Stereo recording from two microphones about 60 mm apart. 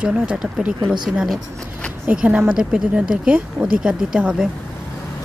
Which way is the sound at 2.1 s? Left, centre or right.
Right.